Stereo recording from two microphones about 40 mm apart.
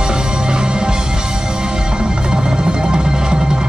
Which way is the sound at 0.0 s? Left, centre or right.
Right.